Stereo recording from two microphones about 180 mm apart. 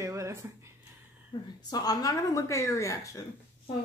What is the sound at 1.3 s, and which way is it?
Speech, 20° left (ahead or behind).